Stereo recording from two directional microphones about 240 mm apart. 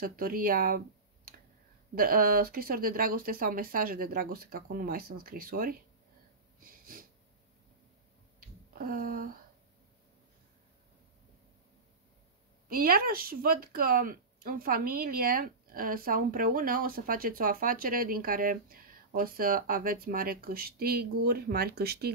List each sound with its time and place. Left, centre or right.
0.0 s speech: right
6.6 s wheeze: right
8.4 s a sound: right
12.6 s speech: right